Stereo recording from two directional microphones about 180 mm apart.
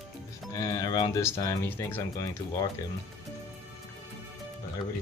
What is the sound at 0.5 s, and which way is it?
Speech, 20° left (ahead or behind).